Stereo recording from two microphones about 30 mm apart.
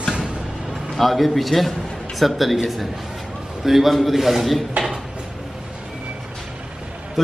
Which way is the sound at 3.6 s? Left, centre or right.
Centre.